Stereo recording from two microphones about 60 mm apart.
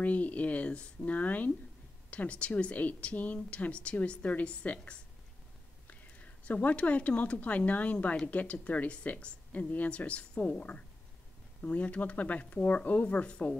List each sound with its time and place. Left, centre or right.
0.0 s a woman's voice: left
11.6 s speech: left